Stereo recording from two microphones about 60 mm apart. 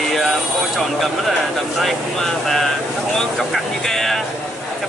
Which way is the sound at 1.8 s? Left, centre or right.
Centre.